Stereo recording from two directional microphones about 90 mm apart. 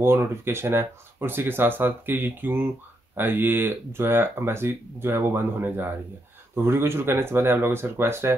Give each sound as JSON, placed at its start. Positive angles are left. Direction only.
{"t": 0.0, "sound": "speech", "side_deg": -30}